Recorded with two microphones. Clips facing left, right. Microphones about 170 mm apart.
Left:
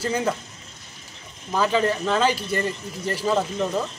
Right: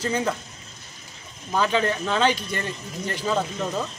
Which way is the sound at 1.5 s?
5° left (ahead or behind).